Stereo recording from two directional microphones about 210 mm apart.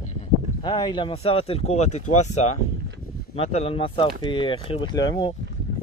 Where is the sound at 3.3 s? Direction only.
30° left (ahead or behind).